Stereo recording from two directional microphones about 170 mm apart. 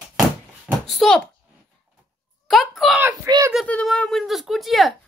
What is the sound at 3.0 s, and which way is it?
Speech, 20° right (ahead or behind).